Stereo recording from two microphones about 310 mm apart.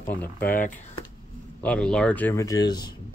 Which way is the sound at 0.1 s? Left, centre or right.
Centre.